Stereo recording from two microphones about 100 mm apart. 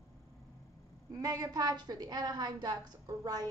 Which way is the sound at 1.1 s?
35° right (ahead or behind).